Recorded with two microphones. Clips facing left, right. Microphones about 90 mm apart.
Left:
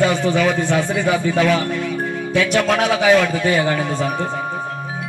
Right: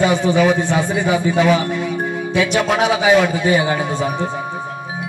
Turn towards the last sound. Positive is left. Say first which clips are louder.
# right 1 dB
turn(degrees=-15)  # may be behind; listen again after turning